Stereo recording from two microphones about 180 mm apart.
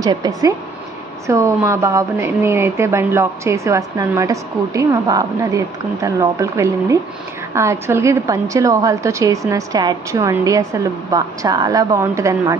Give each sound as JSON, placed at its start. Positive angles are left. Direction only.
{"t": 0.0, "sound": "a woman's voice", "side_deg": -20}